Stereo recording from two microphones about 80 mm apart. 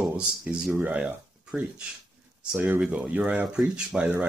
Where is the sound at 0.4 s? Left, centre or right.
Centre.